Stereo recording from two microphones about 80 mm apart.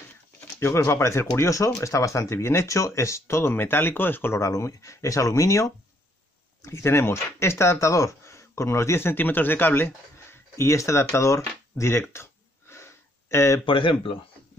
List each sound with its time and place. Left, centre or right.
0.6 s speech: left
11.1 s a sound: left
13.7 s speech: left